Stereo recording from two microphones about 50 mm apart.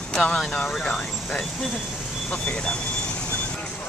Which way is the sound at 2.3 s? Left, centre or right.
Centre.